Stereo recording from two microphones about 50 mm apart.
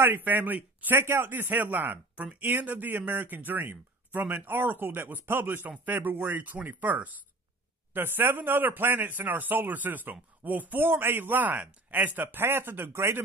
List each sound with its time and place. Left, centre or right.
0.0 s a man's voice: right
0.9 s a man's voice: right
7.9 s a man's voice: right